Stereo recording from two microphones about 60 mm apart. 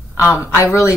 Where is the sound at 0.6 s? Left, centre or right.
Left.